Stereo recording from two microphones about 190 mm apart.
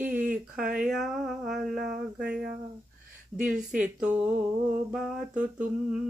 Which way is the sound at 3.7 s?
5° right (ahead or behind).